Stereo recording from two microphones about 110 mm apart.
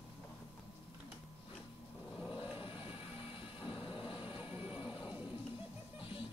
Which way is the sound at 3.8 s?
50° left (ahead or behind).